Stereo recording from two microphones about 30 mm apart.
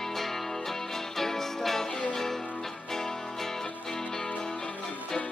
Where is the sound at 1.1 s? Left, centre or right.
Centre.